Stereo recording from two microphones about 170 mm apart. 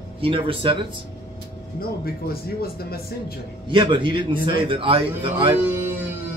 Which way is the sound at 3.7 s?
30° right (ahead or behind).